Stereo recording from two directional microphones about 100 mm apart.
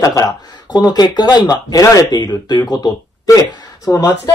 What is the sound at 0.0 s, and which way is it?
Speech, 35° left (ahead or behind).